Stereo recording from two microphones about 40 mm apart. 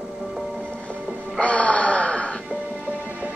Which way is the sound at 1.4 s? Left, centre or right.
Left.